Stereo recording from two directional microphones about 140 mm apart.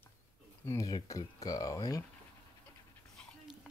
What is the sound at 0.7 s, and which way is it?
Speech, 25° left (ahead or behind).